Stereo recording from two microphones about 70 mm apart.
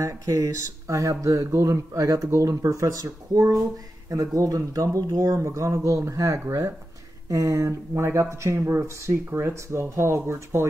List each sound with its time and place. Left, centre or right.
0.0 s speech: right